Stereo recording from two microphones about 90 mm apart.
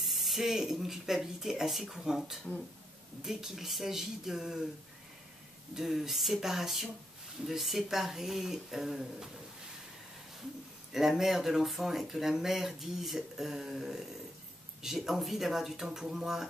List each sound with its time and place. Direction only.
0.0 s speech: centre (ahead or behind)
5.8 s speech: 5° right (ahead or behind)
10.9 s speech: 5° right (ahead or behind)